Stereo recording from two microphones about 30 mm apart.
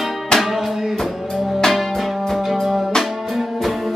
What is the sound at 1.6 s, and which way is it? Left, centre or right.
Music, centre.